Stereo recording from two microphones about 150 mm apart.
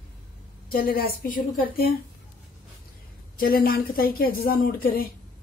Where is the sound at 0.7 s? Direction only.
80° left.